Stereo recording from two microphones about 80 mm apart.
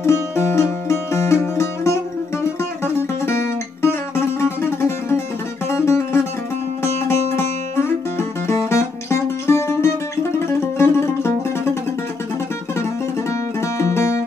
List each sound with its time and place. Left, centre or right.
0.0 s music: left
13.3 s music: left